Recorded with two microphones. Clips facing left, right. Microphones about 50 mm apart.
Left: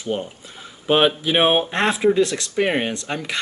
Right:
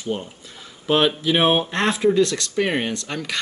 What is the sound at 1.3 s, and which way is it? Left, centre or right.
Speech, centre.